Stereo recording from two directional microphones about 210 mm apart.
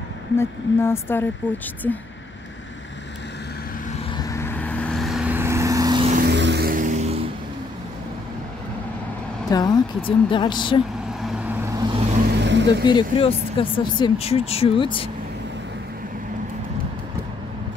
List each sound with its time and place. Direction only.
0.4 s speech: 10° left (ahead or behind)
4.1 s vehicle: 15° left (ahead or behind); by 6.0 s 20° right (ahead or behind)
6.2 s vehicle: 55° right (ahead or behind); by 7.2 s 30° right (ahead or behind)
9.5 s speech: 20° left (ahead or behind)
11.2 s vehicle: 5° right (ahead or behind)
12.3 s vehicle: 55° right (ahead or behind)
12.8 s speech: 25° left (ahead or behind)